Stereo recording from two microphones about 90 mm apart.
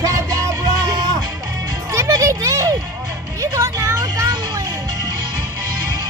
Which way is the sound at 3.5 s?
35° right (ahead or behind).